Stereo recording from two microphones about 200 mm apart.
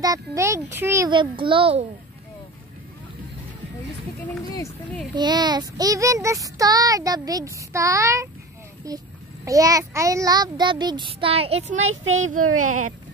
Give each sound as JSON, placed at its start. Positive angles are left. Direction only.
{"t": 0.0, "sound": "a child's voice", "side_deg": -15}
{"t": 5.1, "sound": "child singing", "side_deg": -20}
{"t": 8.8, "sound": "a child's voice", "side_deg": -15}
{"t": 11.9, "sound": "speech", "side_deg": -80}
{"t": 12.6, "sound": "speech", "side_deg": -90}